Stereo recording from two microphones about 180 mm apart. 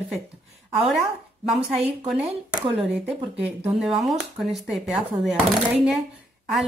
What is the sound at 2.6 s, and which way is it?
Speech, 35° right (ahead or behind).